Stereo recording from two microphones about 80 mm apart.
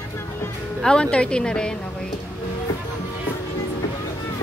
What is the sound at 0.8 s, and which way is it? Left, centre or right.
Speech, centre.